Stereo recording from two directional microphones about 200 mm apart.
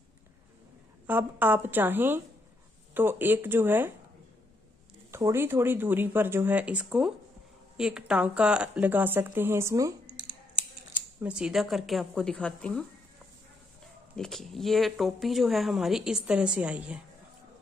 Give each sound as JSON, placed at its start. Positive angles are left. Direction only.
{"t": 1.0, "sound": "speech", "side_deg": -10}
{"t": 5.1, "sound": "speech", "side_deg": -10}
{"t": 11.1, "sound": "speech", "side_deg": -5}
{"t": 14.1, "sound": "speech", "side_deg": 0}